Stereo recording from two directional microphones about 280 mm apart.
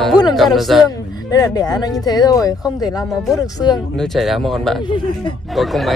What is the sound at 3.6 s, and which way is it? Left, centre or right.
Speech, centre.